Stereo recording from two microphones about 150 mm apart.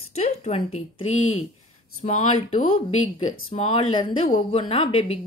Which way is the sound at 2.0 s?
50° left (ahead or behind).